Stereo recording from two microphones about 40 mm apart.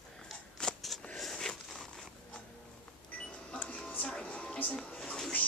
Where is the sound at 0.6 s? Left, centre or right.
Left.